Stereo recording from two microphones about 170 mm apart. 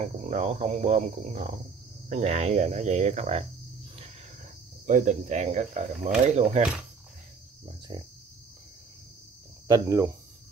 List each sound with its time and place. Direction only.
0.0 s speech: 40° right (ahead or behind)
4.8 s speech: 45° right (ahead or behind)
7.9 s speech: 25° right (ahead or behind)
9.7 s speech: 20° right (ahead or behind)